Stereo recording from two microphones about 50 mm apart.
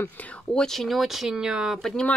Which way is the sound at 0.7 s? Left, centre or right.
Centre.